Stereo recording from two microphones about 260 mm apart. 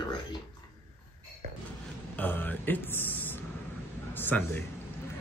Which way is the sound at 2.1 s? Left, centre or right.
Centre.